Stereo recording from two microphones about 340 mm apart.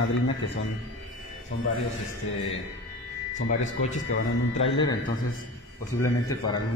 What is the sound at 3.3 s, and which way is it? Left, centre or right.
Speech, left.